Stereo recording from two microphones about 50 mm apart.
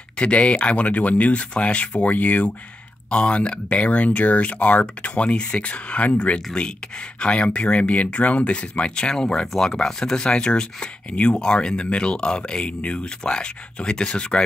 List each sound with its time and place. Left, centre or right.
0.2 s speech: left